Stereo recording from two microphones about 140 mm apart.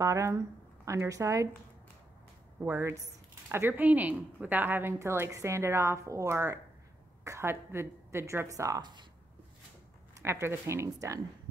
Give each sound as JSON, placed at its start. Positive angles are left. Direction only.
{"t": 0.0, "sound": "a woman's voice", "side_deg": -20}
{"t": 2.6, "sound": "a woman's voice", "side_deg": -15}
{"t": 10.1, "sound": "a woman's voice", "side_deg": -20}